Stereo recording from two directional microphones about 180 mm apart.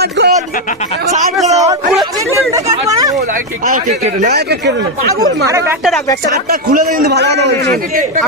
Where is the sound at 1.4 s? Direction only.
40° right (ahead or behind).